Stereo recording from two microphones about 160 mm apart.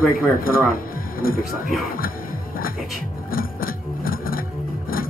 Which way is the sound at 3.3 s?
65° left (ahead or behind).